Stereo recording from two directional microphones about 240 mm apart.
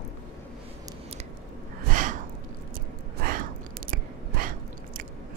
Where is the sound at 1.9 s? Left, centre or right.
Right.